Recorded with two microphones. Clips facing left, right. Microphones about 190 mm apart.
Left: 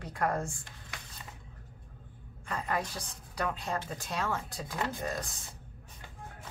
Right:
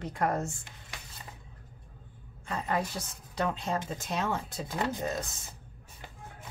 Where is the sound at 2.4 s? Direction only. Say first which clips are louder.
Right 2 dB; 25° right (ahead or behind).